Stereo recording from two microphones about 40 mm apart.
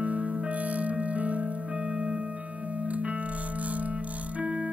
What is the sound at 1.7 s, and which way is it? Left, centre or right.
Music, right.